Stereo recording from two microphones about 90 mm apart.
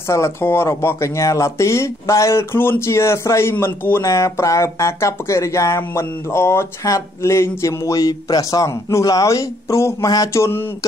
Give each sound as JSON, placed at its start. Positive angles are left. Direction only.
{"t": 0.1, "sound": "speech", "side_deg": 30}
{"t": 4.0, "sound": "speech", "side_deg": 35}
{"t": 10.0, "sound": "mantra", "side_deg": 45}
{"t": 10.3, "sound": "speech", "side_deg": 30}